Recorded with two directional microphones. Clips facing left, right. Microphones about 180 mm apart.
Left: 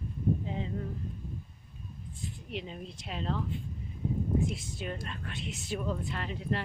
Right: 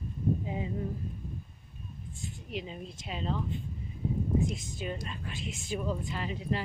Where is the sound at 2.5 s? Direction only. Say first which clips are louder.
Right 1 dB; centre (ahead or behind).